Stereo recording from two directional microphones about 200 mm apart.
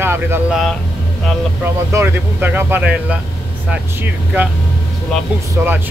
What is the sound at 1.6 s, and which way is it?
Speech, 10° right (ahead or behind).